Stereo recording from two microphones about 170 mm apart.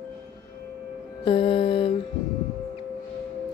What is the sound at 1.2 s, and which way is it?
Mantra, 30° left (ahead or behind).